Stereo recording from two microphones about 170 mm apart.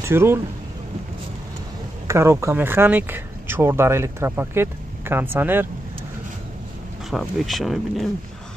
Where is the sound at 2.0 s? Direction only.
15° right (ahead or behind).